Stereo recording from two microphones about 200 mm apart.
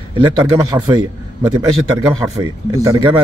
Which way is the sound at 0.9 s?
20° right (ahead or behind).